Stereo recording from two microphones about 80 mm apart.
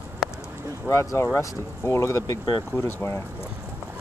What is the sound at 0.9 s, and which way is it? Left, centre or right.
Speech, left.